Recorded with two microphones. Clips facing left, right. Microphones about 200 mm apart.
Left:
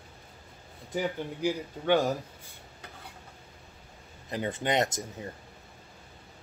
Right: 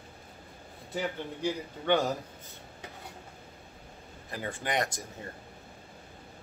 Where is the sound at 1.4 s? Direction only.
15° left (ahead or behind).